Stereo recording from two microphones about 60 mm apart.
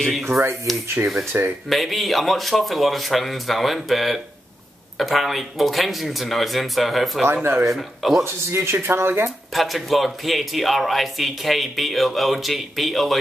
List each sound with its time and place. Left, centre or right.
0.0 s a man's voice: centre
0.3 s speech: right
1.0 s speech: right
1.7 s a man's voice: centre
8.2 s speech: right
9.5 s a man's voice: centre